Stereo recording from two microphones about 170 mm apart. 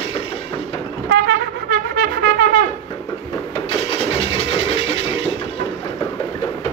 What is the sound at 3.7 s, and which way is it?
Engine, 35° left (ahead or behind).